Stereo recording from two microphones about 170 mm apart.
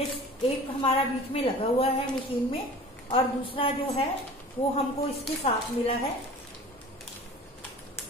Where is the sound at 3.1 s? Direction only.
30° left (ahead or behind).